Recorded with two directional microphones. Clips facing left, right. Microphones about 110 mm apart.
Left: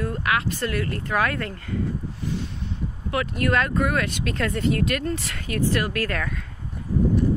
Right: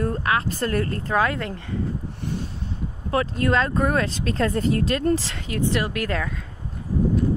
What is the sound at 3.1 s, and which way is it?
Speech, 30° right (ahead or behind).